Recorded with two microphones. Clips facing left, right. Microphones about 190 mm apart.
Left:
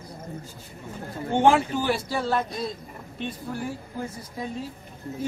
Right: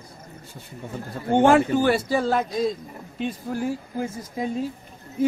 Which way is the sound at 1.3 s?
50° right (ahead or behind).